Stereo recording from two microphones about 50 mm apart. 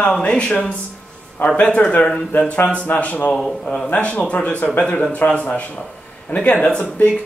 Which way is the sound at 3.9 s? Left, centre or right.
Left.